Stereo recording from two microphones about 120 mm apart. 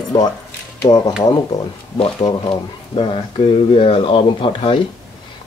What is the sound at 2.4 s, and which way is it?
Speech, 45° left (ahead or behind).